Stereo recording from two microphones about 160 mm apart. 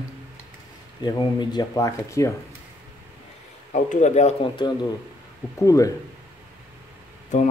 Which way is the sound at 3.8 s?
50° left (ahead or behind).